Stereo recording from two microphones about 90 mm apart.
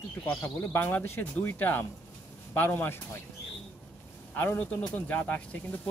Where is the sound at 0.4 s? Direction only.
25° left (ahead or behind).